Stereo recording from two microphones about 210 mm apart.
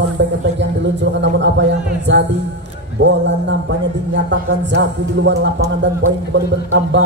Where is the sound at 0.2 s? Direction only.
60° right (ahead or behind).